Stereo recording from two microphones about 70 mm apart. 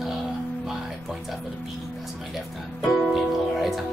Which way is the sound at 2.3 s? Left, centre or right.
Centre.